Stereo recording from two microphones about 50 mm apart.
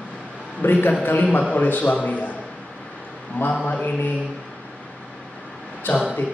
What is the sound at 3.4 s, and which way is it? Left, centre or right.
Speech, left.